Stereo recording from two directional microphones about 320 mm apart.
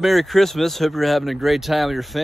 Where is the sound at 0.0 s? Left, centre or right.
Centre.